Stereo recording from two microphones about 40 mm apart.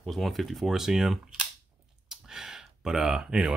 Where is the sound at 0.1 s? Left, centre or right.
Centre.